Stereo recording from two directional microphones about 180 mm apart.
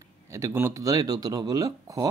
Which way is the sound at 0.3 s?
15° right (ahead or behind).